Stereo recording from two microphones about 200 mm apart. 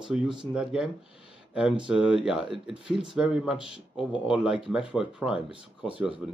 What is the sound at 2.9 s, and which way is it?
Speech, 5° right (ahead or behind).